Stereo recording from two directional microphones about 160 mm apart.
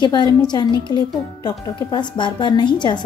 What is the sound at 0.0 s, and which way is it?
A woman's voice, 25° left (ahead or behind).